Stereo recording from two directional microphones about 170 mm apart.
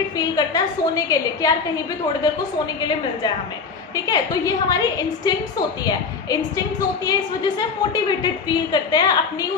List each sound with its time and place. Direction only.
0.2 s a woman's voice: 20° left (ahead or behind)
3.9 s a woman's voice: 20° left (ahead or behind)